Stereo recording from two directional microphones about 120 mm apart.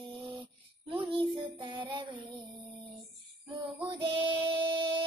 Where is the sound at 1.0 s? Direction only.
45° right (ahead or behind).